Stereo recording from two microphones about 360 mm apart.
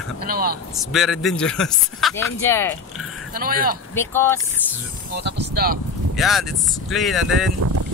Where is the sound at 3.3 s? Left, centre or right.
Right.